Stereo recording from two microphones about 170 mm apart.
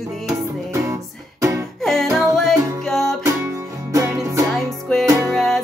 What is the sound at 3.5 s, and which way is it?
Music, 15° right (ahead or behind).